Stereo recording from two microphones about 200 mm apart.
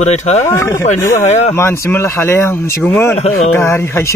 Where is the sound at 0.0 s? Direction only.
35° left (ahead or behind).